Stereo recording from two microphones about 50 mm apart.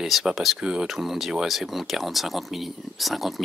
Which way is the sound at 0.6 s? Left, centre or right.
Centre.